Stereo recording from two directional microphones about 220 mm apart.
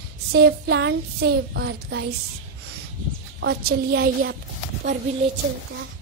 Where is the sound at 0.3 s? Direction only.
50° right (ahead or behind).